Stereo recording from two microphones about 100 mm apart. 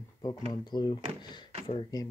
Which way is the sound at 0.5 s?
45° left (ahead or behind).